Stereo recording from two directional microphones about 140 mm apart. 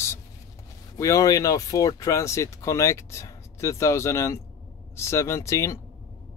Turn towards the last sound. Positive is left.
turn(degrees=20)  # may be behind; listen again after turning